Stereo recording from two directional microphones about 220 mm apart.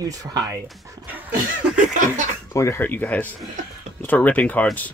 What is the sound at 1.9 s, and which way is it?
Laughter, 35° right (ahead or behind).